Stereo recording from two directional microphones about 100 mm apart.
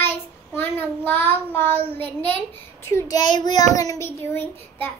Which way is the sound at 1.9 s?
20° left (ahead or behind).